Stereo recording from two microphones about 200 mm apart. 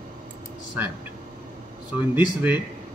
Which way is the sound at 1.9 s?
10° right (ahead or behind).